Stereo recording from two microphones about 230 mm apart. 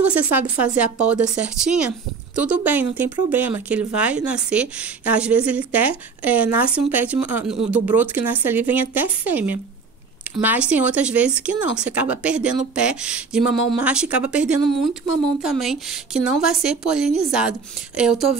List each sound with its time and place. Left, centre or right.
0.0 s speech: centre
1.1 s a woman's voice: right
1.6 s speech: centre